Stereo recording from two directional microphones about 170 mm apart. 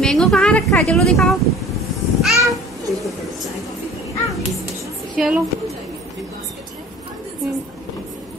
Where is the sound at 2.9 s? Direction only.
Centre (ahead or behind).